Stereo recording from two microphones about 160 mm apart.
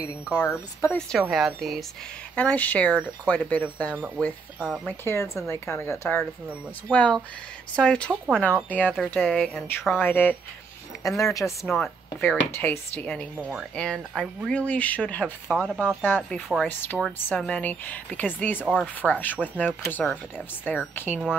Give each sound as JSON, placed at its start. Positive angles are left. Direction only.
{"t": 0.8, "sound": "speech", "side_deg": 5}
{"t": 4.6, "sound": "speech", "side_deg": -5}
{"t": 4.8, "sound": "speech", "side_deg": 15}
{"t": 9.9, "sound": "a woman's voice", "side_deg": 10}
{"t": 11.6, "sound": "a woman's voice", "side_deg": 5}
{"t": 18.6, "sound": "speech", "side_deg": -5}
{"t": 18.9, "sound": "speech", "side_deg": 10}